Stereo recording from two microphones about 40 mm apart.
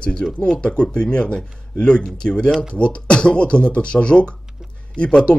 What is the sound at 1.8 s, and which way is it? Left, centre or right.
Speech, left.